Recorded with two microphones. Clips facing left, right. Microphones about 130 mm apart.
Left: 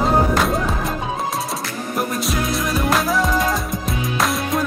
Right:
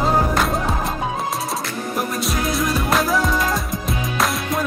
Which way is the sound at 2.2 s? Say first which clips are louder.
Even; centre (ahead or behind).